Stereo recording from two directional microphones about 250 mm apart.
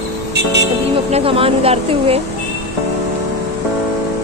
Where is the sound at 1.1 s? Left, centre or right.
Right.